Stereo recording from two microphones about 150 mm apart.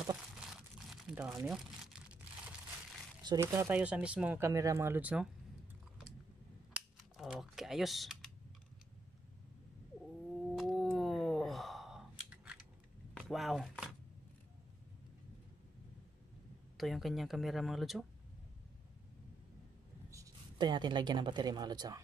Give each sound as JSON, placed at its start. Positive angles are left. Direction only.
{"t": 0.1, "sound": "crumpling", "side_deg": -5}
{"t": 1.1, "sound": "speech", "side_deg": -5}
{"t": 3.3, "sound": "speech", "side_deg": -15}
{"t": 7.2, "sound": "speech", "side_deg": 0}
{"t": 10.4, "sound": "a sound", "side_deg": 0}
{"t": 13.1, "sound": "chopping", "side_deg": 0}
{"t": 16.7, "sound": "speech", "side_deg": 0}
{"t": 20.5, "sound": "speech", "side_deg": -30}